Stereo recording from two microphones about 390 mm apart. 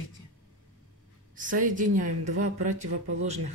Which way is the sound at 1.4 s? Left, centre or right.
Right.